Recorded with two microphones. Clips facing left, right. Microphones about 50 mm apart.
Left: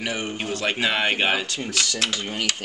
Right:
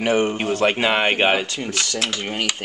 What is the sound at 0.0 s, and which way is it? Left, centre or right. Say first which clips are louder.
Speech: right 9 dB; right.